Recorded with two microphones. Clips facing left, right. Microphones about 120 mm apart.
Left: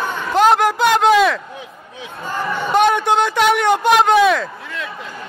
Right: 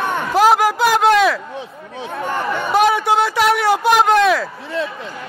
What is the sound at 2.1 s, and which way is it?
Speech, 65° right (ahead or behind).